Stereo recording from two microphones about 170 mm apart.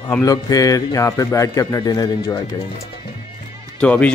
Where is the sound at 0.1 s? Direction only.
20° left (ahead or behind).